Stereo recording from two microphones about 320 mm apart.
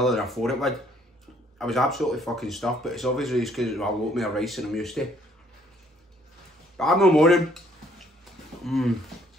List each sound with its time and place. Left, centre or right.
0.0 s speech: centre
6.8 s speech: centre